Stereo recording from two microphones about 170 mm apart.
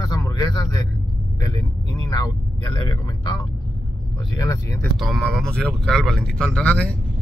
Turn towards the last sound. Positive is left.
turn(degrees=10)  # may be behind; listen again after turning